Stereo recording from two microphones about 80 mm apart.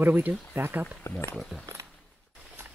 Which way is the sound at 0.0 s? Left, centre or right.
Right.